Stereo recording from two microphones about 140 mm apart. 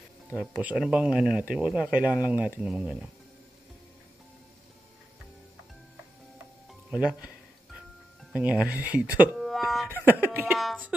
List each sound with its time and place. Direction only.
0.4 s speech: 10° right (ahead or behind)
6.7 s music: 5° right (ahead or behind)
8.7 s speech: 10° right (ahead or behind)
9.4 s a sound: centre (ahead or behind)
9.8 s speech: 15° right (ahead or behind)
10.5 s speech: centre (ahead or behind)